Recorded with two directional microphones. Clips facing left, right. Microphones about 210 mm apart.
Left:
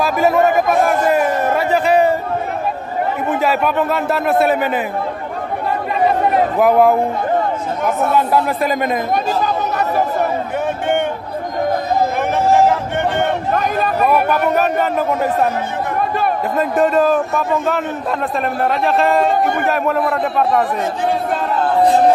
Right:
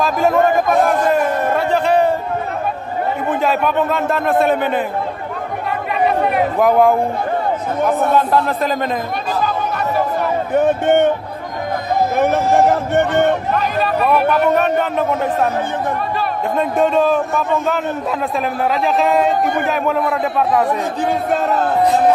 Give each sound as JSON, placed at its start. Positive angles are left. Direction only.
{"t": 0.0, "sound": "a sound", "side_deg": 5}
{"t": 3.3, "sound": "a man's voice", "side_deg": 5}
{"t": 6.6, "sound": "a man's voice", "side_deg": 5}
{"t": 8.2, "sound": "a man's voice", "side_deg": 10}
{"t": 10.5, "sound": "a sound", "side_deg": -40}
{"t": 12.2, "sound": "music", "side_deg": -40}
{"t": 13.5, "sound": "speech", "side_deg": 45}
{"t": 14.5, "sound": "a man's voice", "side_deg": 5}
{"t": 16.5, "sound": "a man's voice", "side_deg": 0}